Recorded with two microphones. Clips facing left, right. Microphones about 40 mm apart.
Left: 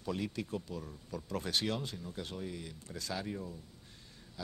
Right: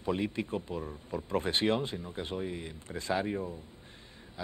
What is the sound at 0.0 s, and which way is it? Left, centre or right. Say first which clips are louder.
Speech: right 6 dB; right.